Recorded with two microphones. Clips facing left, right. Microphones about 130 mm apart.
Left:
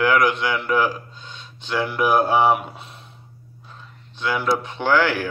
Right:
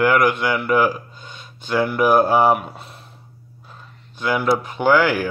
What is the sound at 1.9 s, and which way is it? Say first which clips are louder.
Speech: right 2 dB; 5° right (ahead or behind).